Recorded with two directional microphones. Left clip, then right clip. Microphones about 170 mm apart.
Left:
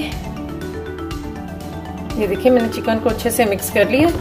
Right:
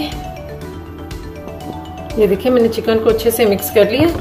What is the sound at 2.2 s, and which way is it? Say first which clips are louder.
A woman's voice: right 3 dB; 35° left (ahead or behind).